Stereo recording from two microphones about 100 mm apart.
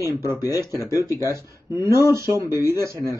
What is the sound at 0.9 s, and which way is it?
Speech, 35° left (ahead or behind).